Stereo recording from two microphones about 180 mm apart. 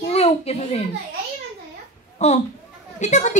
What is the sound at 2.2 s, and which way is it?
A child's voice, 40° left (ahead or behind).